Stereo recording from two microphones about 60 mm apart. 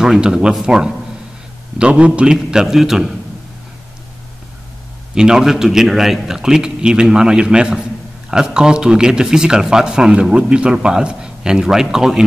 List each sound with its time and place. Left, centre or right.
0.0 s a man's voice: centre
2.3 s a man's voice: centre
5.1 s a man's voice: centre